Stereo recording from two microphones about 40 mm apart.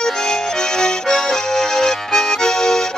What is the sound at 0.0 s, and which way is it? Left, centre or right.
Accordion, centre.